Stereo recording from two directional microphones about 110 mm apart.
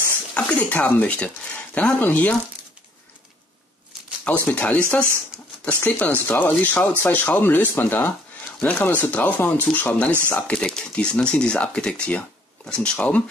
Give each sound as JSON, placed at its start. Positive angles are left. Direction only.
{"t": 0.3, "sound": "speech", "side_deg": 15}
{"t": 4.2, "sound": "speech", "side_deg": 15}